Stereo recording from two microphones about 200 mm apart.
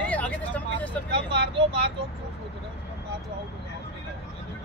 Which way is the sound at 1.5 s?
25° right (ahead or behind).